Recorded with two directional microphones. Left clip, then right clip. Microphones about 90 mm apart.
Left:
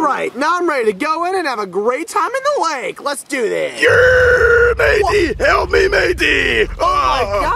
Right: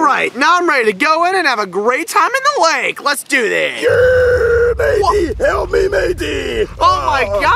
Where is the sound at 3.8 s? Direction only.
15° left (ahead or behind).